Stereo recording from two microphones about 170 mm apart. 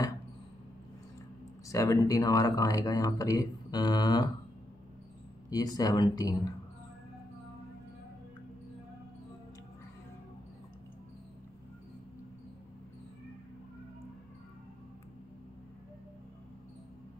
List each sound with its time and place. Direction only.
1.7 s speech: 20° left (ahead or behind)
5.5 s speech: 20° left (ahead or behind)